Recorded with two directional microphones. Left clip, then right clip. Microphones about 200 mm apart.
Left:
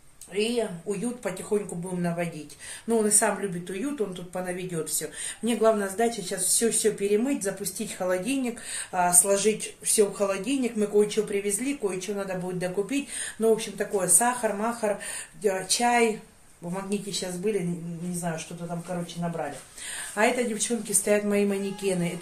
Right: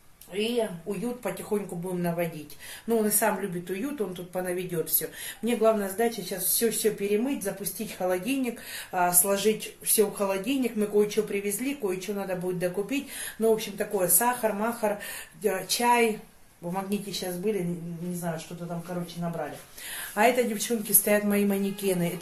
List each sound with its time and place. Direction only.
0.3 s speech: 10° left (ahead or behind)
19.2 s speech: 5° left (ahead or behind)
20.2 s a woman's voice: 20° right (ahead or behind)